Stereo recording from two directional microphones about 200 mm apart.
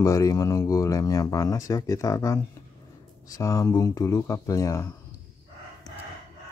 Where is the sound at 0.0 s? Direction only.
15° left (ahead or behind).